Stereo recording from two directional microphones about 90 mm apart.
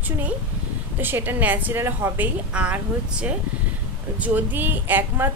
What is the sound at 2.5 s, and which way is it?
Speech, 15° right (ahead or behind).